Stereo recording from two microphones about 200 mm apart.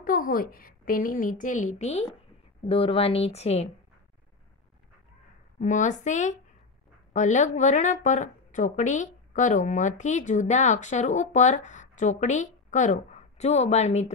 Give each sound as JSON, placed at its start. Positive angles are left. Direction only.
{"t": 0.0, "sound": "a woman's voice", "side_deg": 45}
{"t": 5.6, "sound": "a woman's voice", "side_deg": 40}